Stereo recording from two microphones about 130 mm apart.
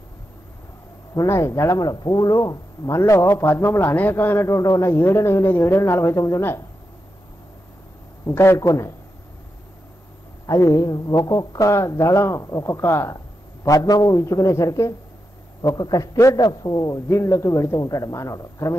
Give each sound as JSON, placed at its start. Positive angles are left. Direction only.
{"t": 1.1, "sound": "speech", "side_deg": 25}
{"t": 8.4, "sound": "speech", "side_deg": 20}
{"t": 10.4, "sound": "speech", "side_deg": 25}